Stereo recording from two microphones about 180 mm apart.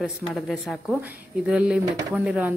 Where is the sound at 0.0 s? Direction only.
Centre (ahead or behind).